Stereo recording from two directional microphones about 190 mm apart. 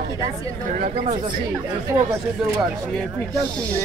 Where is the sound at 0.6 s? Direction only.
40° right (ahead or behind).